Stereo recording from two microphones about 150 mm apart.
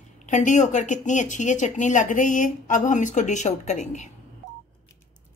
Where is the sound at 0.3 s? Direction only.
55° left (ahead or behind).